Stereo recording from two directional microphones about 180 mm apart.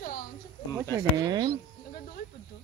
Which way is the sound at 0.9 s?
20° right (ahead or behind).